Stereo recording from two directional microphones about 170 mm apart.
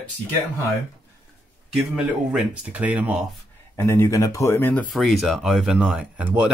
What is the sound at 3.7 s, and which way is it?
Speech, 15° left (ahead or behind).